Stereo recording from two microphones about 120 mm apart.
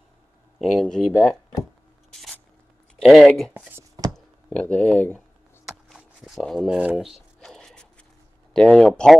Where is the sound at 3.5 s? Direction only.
20° right (ahead or behind).